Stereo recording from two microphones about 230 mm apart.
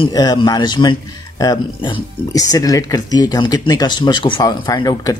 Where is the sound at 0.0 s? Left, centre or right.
Centre.